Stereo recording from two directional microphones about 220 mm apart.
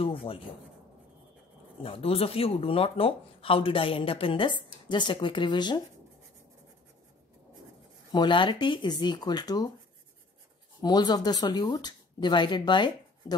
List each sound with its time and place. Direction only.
0.0 s speech: 25° left (ahead or behind)
1.8 s speech: 25° left (ahead or behind)
8.1 s speech: 20° left (ahead or behind)
10.8 s speech: 20° left (ahead or behind)